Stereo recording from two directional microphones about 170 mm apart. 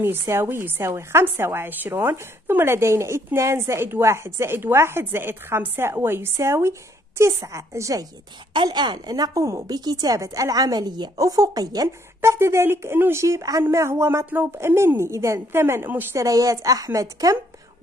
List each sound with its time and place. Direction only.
0.0 s a woman's voice: 15° right (ahead or behind)